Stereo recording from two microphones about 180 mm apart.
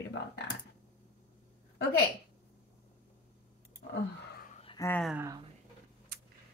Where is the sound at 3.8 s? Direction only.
65° left (ahead or behind).